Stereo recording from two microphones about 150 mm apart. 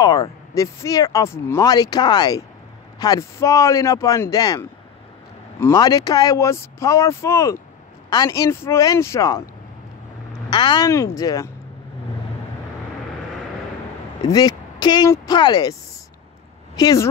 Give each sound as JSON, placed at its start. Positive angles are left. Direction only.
{"t": 0.0, "sound": "speech", "side_deg": 25}
{"t": 10.5, "sound": "speech", "side_deg": 30}
{"t": 14.3, "sound": "speech", "side_deg": 25}
{"t": 16.7, "sound": "speech", "side_deg": 25}